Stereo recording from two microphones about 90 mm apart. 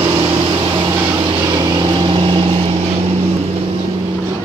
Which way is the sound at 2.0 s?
70° right (ahead or behind).